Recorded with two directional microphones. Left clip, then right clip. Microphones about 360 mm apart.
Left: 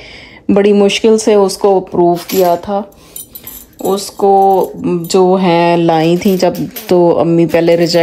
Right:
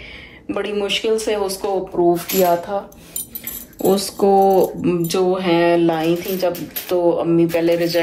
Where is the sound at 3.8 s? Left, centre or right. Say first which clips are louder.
Left 4 dB; centre.